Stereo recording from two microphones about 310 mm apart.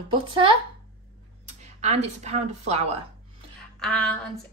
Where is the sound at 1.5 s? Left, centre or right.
Right.